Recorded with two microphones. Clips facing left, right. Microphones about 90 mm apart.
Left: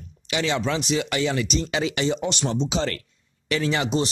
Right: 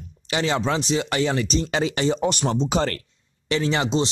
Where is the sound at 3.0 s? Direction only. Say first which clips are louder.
Even; 30° right (ahead or behind).